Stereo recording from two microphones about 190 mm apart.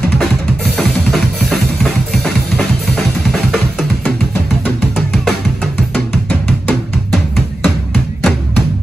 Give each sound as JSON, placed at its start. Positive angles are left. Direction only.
{"t": 0.7, "sound": "drum kit", "side_deg": 0}
{"t": 3.3, "sound": "music", "side_deg": 0}